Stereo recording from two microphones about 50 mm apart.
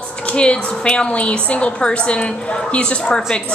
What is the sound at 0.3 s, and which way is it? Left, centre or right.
A woman's voice, left.